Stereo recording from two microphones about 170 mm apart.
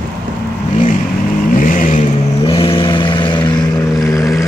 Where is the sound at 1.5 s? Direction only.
50° left (ahead or behind).